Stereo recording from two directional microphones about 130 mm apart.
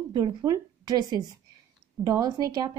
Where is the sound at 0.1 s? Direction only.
30° right (ahead or behind).